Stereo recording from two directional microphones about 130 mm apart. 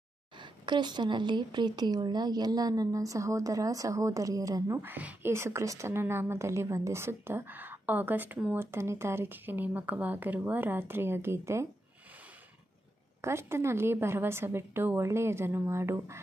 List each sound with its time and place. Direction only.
0.4 s a woman's voice: 35° right (ahead or behind)
4.8 s a woman's voice: 15° right (ahead or behind)
13.2 s a woman's voice: 20° right (ahead or behind)